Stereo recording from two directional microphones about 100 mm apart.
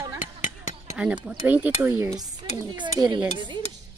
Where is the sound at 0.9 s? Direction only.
15° right (ahead or behind).